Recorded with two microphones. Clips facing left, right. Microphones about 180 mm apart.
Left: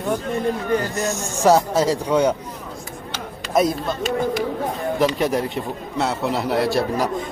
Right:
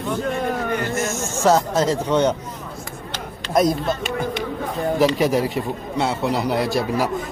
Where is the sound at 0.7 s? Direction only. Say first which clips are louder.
Left 2 dB; 35° left (ahead or behind).